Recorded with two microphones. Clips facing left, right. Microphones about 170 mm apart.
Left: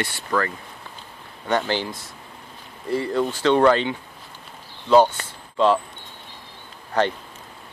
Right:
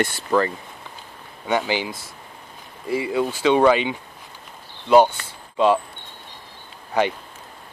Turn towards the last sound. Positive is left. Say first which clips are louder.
# even
turn(degrees=-10)  # may be behind; listen again after turning